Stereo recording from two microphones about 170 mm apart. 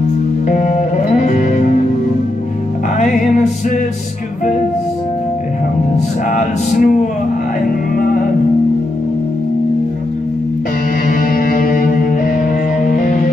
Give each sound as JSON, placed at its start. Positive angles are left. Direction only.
{"t": 0.5, "sound": "music", "side_deg": 45}
{"t": 3.0, "sound": "music", "side_deg": 45}
{"t": 5.9, "sound": "music", "side_deg": 45}
{"t": 11.1, "sound": "music", "side_deg": 55}